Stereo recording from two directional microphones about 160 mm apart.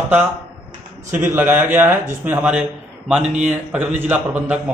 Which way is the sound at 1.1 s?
10° right (ahead or behind).